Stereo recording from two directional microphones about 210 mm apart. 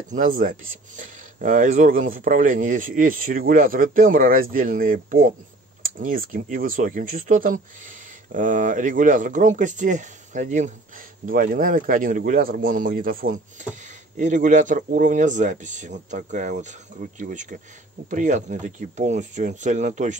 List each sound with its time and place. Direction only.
0.1 s speech: 40° right (ahead or behind)